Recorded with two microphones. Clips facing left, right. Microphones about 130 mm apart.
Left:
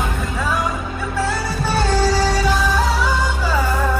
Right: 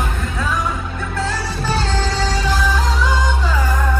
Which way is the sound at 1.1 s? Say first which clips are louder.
Left 2 dB; 10° left (ahead or behind).